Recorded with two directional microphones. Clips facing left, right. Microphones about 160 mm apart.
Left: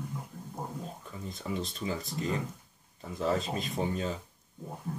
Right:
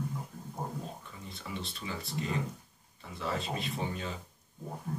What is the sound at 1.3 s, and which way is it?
Speech, 40° left (ahead or behind).